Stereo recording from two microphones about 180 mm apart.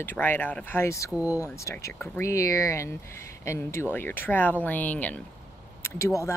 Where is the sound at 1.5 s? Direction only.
15° left (ahead or behind).